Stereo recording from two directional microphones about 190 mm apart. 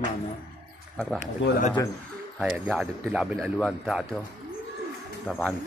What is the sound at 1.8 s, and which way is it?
Speech, 15° left (ahead or behind).